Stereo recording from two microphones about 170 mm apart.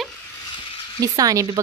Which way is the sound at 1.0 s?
20° right (ahead or behind).